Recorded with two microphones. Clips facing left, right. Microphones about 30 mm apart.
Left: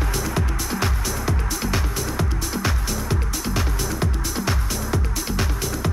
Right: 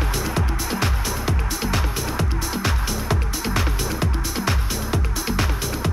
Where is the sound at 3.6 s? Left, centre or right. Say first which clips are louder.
Right 1 dB; centre.